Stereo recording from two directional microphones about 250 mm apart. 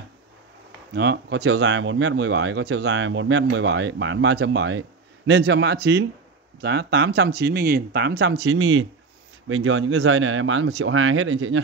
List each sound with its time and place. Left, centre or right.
0.9 s speech: right